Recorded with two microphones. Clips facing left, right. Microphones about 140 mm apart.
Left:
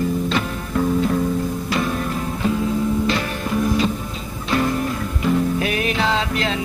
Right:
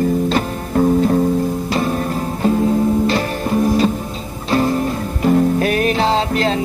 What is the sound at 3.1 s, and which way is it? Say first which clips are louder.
Music: right 4 dB; 35° right (ahead or behind).